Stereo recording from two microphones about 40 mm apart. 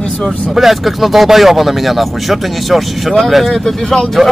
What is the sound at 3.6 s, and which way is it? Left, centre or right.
Speech, centre.